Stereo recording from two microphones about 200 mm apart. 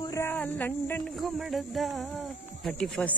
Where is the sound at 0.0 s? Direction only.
15° left (ahead or behind).